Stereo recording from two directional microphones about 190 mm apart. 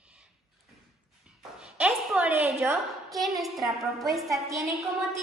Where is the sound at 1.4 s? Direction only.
5° right (ahead or behind).